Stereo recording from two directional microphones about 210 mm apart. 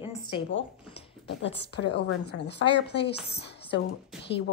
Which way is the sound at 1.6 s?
55° left (ahead or behind).